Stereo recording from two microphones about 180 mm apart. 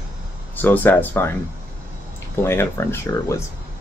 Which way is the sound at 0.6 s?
10° left (ahead or behind).